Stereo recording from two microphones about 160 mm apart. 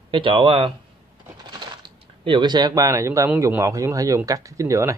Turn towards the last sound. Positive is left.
turn(degrees=-20)  # may be behind; listen again after turning